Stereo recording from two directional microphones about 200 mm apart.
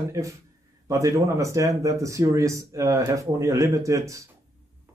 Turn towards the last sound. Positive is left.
turn(degrees=-15)  # may be behind; listen again after turning